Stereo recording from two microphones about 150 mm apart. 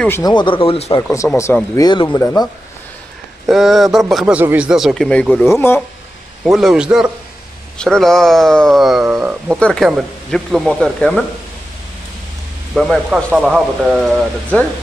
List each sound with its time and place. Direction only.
0.2 s speech: 30° left (ahead or behind)
1.1 s speech: 20° left (ahead or behind)
3.4 s speech: centre (ahead or behind); by 5.8 s 15° left (ahead or behind)
6.4 s speech: 5° right (ahead or behind)
9.0 s speech: 15° right (ahead or behind)
9.6 s speech: 5° left (ahead or behind)
12.7 s speech: 5° right (ahead or behind)